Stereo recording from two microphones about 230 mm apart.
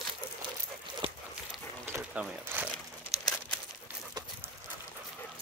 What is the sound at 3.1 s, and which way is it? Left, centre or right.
Crumpling, centre.